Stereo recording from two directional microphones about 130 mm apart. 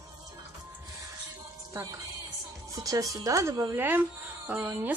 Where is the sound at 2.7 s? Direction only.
25° right (ahead or behind); by 4.6 s 10° right (ahead or behind).